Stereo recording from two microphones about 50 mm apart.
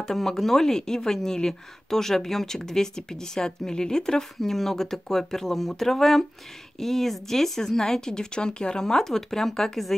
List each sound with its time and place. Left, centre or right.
0.0 s speech: centre